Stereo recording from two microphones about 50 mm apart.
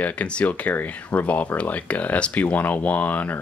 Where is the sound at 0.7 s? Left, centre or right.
Left.